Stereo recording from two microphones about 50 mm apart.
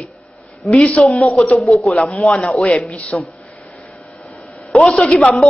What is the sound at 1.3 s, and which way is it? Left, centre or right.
Speech, left.